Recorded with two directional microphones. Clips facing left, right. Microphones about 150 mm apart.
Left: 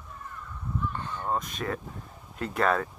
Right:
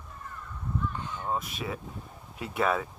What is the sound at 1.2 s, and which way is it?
Speech, 5° right (ahead or behind).